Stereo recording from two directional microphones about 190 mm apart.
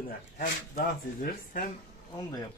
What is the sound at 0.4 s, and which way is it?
Speech, 45° left (ahead or behind).